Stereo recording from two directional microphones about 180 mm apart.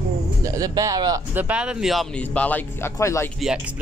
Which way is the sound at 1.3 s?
10° right (ahead or behind).